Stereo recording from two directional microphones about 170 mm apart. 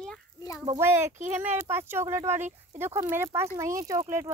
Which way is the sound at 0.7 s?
15° right (ahead or behind).